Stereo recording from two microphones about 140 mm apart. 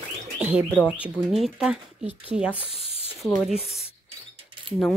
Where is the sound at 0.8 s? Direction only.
10° right (ahead or behind).